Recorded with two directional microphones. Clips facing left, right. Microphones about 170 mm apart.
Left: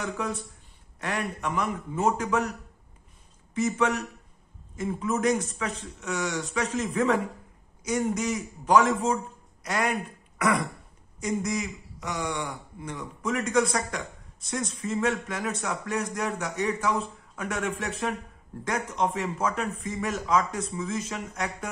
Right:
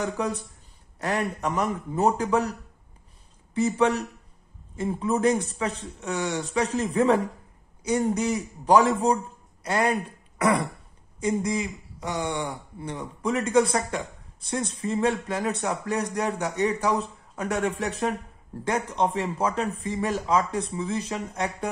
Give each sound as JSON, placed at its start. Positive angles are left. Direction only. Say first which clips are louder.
{"t": 0.0, "sound": "a man's voice", "louder": "right 4 dB", "side_deg": -35}
{"t": 3.5, "sound": "a man's voice", "louder": "right 3 dB", "side_deg": -30}